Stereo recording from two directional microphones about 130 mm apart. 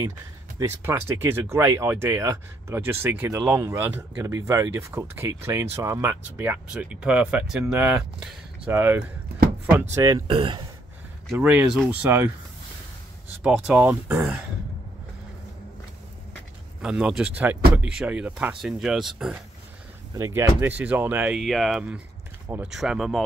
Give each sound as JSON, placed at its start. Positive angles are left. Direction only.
{"t": 0.6, "sound": "speech", "side_deg": -20}
{"t": 9.9, "sound": "speech", "side_deg": -25}
{"t": 10.2, "sound": "speech", "side_deg": -40}
{"t": 11.3, "sound": "speech", "side_deg": -10}
{"t": 13.4, "sound": "speech", "side_deg": -5}
{"t": 16.8, "sound": "speech", "side_deg": -5}
{"t": 20.2, "sound": "speech", "side_deg": -25}
{"t": 21.4, "sound": "speech", "side_deg": 0}